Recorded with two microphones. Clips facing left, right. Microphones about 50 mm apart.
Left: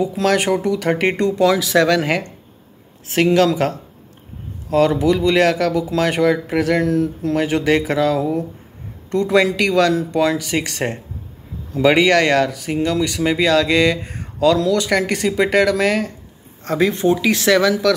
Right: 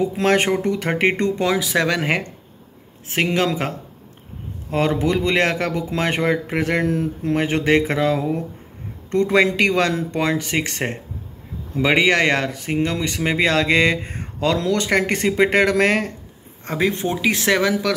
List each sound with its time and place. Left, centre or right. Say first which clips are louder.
0.0 s speech: left 1 dB; right
1.4 s speech: left 7 dB; centre
11.7 s speech: left 3 dB; centre; by 16.1 s right
16.6 s speech: left 5 dB; centre